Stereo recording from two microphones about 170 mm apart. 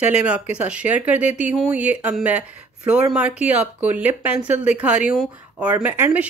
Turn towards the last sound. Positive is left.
turn(degrees=-10)  # may be behind; listen again after turning